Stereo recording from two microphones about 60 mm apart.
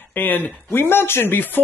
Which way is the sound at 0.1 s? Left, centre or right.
Left.